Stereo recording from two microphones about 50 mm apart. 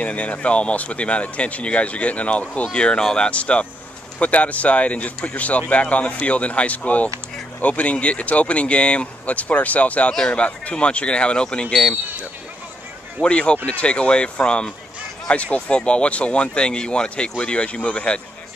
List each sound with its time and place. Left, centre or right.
0.0 s speech: left
13.2 s speech: left